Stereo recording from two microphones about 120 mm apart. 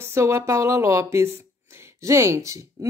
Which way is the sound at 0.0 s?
25° right (ahead or behind).